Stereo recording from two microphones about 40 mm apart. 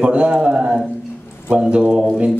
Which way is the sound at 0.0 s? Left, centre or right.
Right.